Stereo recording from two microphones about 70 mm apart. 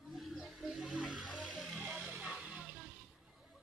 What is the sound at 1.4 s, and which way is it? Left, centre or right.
Music, centre.